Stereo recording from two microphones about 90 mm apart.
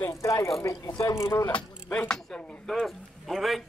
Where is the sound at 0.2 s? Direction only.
35° left (ahead or behind).